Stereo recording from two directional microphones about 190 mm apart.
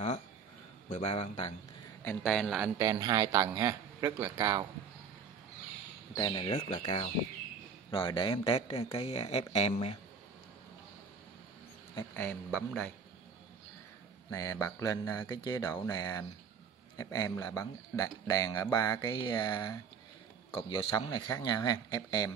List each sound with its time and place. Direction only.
0.8 s speech: 35° left (ahead or behind)
2.0 s a man's voice: 5° left (ahead or behind)
2.8 s speech: 20° right (ahead or behind)
6.1 s speech: 20° left (ahead or behind)
12.2 s speech: 10° left (ahead or behind)
14.3 s speech: 20° left (ahead or behind)